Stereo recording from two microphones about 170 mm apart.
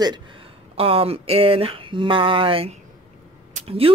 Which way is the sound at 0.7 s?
35° right (ahead or behind).